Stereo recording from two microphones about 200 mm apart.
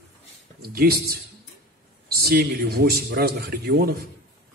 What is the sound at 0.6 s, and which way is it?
Speech, 50° right (ahead or behind).